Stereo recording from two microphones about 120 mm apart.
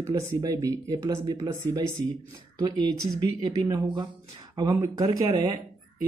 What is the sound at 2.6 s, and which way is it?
Speech, 30° right (ahead or behind).